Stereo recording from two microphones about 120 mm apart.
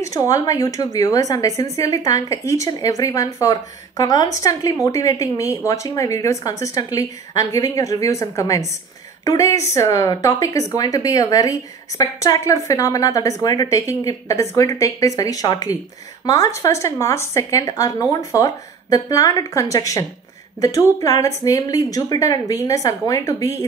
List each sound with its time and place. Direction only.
0.0 s speech: 30° left (ahead or behind)